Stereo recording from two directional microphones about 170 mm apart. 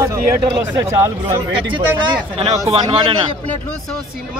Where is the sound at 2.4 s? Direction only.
35° right (ahead or behind).